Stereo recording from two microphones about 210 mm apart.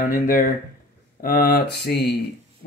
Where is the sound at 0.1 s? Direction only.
40° left (ahead or behind).